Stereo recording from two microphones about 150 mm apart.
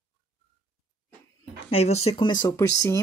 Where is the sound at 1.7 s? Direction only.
45° left (ahead or behind).